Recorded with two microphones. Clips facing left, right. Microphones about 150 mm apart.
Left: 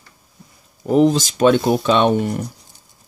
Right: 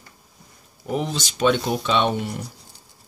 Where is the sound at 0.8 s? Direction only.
40° left (ahead or behind).